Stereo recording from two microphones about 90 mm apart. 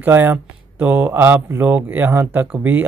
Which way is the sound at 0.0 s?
20° right (ahead or behind).